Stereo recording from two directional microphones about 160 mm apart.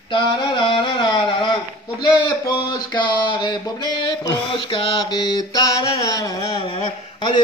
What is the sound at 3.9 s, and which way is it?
Mantra, 25° left (ahead or behind).